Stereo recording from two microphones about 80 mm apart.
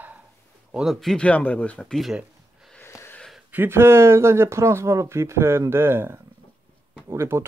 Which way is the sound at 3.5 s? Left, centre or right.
Right.